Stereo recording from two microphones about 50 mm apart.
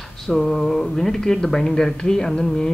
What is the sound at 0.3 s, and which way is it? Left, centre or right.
Speech, centre.